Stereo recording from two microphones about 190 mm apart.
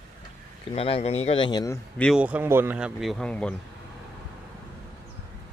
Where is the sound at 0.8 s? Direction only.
30° left (ahead or behind).